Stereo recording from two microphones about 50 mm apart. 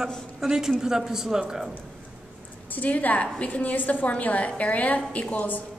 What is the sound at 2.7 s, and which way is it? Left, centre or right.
A woman's voice, left.